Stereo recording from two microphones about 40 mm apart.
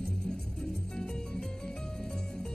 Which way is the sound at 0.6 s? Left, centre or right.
Centre.